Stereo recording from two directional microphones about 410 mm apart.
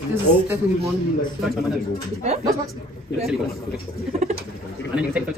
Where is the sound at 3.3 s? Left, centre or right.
Centre.